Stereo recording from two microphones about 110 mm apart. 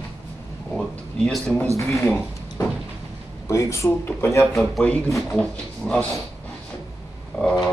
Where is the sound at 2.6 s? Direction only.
30° left (ahead or behind).